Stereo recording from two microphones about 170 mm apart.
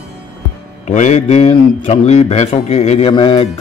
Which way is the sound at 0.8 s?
45° left (ahead or behind).